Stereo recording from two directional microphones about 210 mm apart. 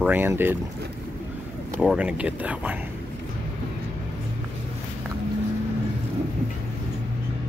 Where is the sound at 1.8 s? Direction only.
5° right (ahead or behind).